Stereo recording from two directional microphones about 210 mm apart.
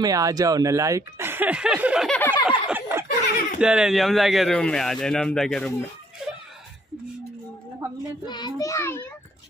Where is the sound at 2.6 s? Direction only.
10° right (ahead or behind).